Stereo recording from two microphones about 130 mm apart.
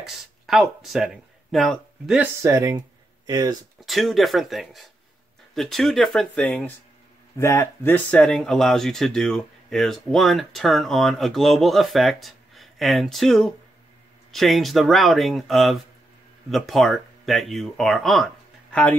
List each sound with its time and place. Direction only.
0.0 s speech: centre (ahead or behind)
2.4 s speech: 20° right (ahead or behind)
3.8 s speech: centre (ahead or behind)
7.3 s speech: 20° left (ahead or behind); by 18.8 s centre (ahead or behind)